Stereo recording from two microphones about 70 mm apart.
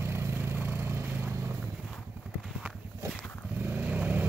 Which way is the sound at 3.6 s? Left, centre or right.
Right.